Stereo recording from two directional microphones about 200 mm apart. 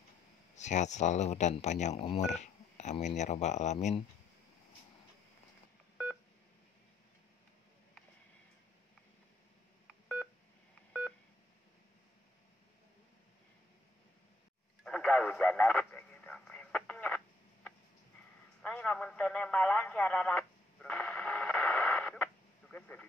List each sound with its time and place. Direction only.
0.6 s speech: 35° left (ahead or behind)
2.4 s telephone dialing: 35° left (ahead or behind)
3.2 s speech: 35° left (ahead or behind)
10.9 s telephone dialing: centre (ahead or behind)
14.8 s radio: centre (ahead or behind)
18.6 s radio: 5° left (ahead or behind)